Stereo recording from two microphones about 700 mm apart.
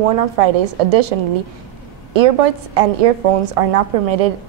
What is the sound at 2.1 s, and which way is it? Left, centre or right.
A woman's voice, right.